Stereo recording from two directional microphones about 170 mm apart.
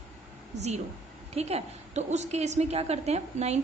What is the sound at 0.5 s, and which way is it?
A woman's voice, 40° right (ahead or behind).